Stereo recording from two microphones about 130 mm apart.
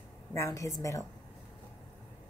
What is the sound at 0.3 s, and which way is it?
Speech, 25° left (ahead or behind).